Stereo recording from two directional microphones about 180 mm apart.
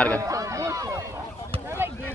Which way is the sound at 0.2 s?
20° right (ahead or behind).